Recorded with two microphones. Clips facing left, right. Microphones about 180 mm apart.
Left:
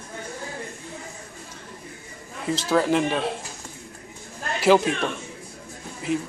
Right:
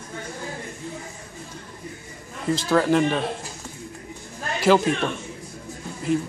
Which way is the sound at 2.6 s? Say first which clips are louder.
Right 2 dB; 5° left (ahead or behind).